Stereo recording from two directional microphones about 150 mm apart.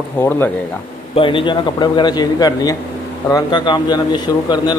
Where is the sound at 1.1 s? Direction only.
35° left (ahead or behind).